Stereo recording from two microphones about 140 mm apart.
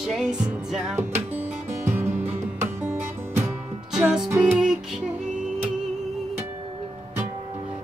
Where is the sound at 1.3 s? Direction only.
15° right (ahead or behind).